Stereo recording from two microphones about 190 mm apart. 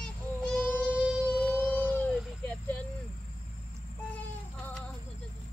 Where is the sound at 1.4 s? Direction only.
10° left (ahead or behind).